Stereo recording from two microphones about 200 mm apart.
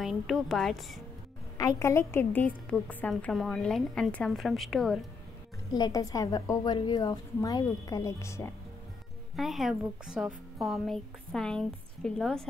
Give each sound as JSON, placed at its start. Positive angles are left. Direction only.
{"t": 0.0, "sound": "a woman's voice", "side_deg": 0}
{"t": 1.6, "sound": "a woman's voice", "side_deg": 15}
{"t": 5.7, "sound": "a woman's voice", "side_deg": 20}
{"t": 9.4, "sound": "a woman's voice", "side_deg": 0}